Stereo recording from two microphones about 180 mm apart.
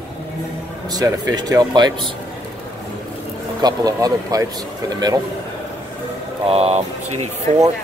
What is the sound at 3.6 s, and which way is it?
Speech, 20° right (ahead or behind).